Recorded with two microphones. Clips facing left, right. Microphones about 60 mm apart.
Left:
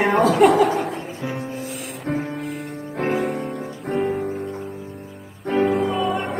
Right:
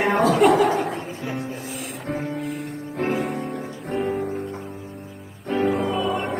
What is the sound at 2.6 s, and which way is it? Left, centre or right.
Music, left.